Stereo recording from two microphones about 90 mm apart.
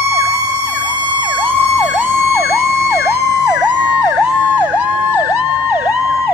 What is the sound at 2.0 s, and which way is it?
Emergency vehicle, 25° right (ahead or behind).